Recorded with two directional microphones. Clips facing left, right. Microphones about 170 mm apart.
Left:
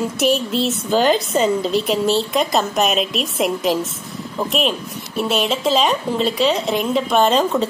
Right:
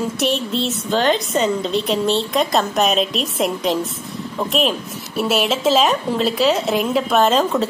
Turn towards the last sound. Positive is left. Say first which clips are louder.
# even
turn(degrees=0)  # may be behind; listen again after turning